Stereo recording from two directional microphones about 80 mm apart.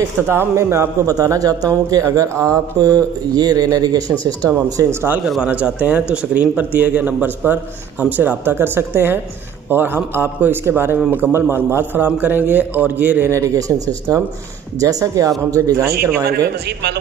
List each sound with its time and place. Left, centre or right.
0.3 s speech: right
1.1 s speech: right
2.0 s speech: right
5.2 s a man's voice: centre
5.5 s a man's voice: centre
13.3 s speech: right